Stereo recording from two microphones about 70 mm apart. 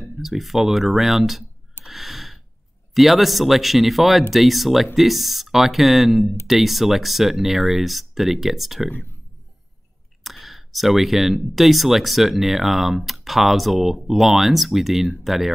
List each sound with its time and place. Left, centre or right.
0.0 s speech: centre
1.9 s gasp: centre
2.9 s speech: centre
10.2 s speech: centre